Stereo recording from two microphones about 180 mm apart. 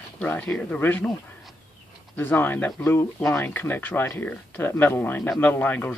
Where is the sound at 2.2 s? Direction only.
10° left (ahead or behind).